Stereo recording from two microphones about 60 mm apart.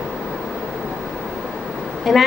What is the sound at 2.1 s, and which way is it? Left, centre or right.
Speech, centre.